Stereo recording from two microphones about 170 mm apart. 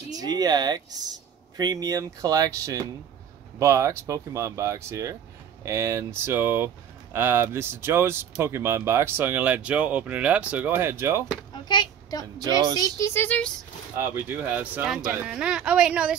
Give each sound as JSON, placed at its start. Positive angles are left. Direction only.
{"t": 0.1, "sound": "speech", "side_deg": -20}
{"t": 11.5, "sound": "a sound", "side_deg": 25}
{"t": 12.4, "sound": "speech", "side_deg": -25}
{"t": 12.7, "sound": "speech", "side_deg": 20}
{"t": 13.9, "sound": "speech", "side_deg": -15}